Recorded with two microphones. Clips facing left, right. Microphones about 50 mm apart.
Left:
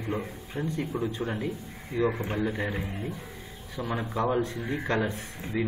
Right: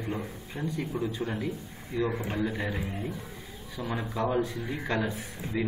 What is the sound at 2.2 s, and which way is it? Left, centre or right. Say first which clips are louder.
A man's voice: left 1 dB; centre.